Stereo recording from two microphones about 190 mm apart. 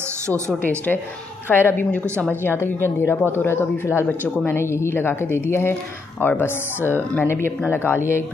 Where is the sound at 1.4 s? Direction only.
10° left (ahead or behind).